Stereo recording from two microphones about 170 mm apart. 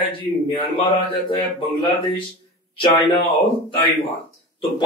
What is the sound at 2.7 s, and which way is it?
Speech, 30° left (ahead or behind).